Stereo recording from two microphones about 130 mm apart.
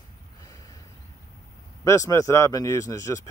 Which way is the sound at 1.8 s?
25° left (ahead or behind).